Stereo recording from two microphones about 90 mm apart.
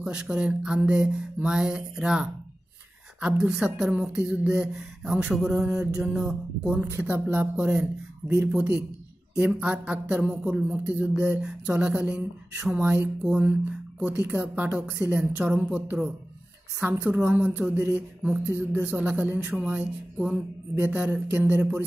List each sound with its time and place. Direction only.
0.0 s speech: 10° right (ahead or behind)
16.8 s speech: 30° right (ahead or behind)
17.1 s speech: 15° right (ahead or behind)
18.9 s speech: 20° right (ahead or behind)